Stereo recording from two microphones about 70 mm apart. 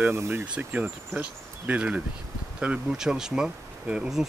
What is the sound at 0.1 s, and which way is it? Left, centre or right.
Speech, right.